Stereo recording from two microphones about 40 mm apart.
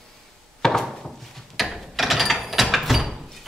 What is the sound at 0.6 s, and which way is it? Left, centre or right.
Wood, centre.